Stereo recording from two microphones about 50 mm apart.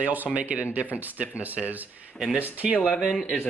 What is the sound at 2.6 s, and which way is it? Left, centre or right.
Speech, centre.